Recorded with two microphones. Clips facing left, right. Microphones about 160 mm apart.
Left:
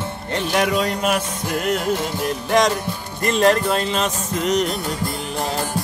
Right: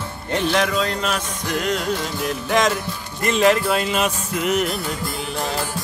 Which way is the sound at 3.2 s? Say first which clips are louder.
Even; centre (ahead or behind).